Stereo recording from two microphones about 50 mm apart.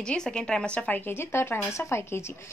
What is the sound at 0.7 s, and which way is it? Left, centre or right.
Speech, left.